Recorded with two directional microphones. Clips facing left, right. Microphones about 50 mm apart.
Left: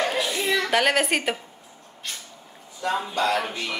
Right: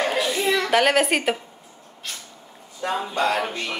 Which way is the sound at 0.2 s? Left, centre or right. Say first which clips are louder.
Right 2 dB; centre.